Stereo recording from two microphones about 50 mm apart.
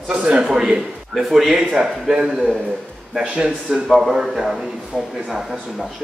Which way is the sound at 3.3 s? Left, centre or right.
Centre.